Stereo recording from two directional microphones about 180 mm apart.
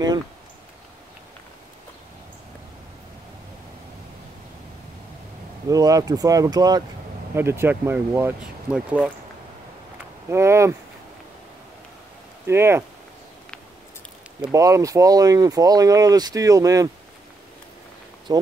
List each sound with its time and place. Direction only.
5.7 s speech: 20° right (ahead or behind)
10.3 s speech: 15° right (ahead or behind)
12.4 s speech: 15° right (ahead or behind)
14.5 s speech: 20° right (ahead or behind)
18.3 s speech: 20° right (ahead or behind)